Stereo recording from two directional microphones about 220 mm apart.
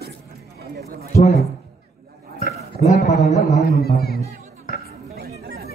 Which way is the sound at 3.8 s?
45° left (ahead or behind).